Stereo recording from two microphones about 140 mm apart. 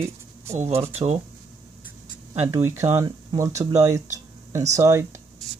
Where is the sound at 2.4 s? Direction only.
15° right (ahead or behind).